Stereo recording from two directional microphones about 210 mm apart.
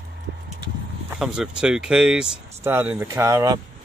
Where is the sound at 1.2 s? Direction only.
5° right (ahead or behind).